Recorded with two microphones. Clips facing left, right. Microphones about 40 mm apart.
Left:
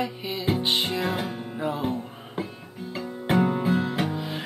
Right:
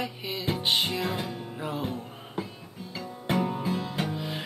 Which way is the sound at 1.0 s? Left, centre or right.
Left.